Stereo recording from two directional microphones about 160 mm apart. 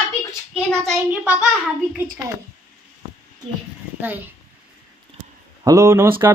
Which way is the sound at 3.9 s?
10° right (ahead or behind).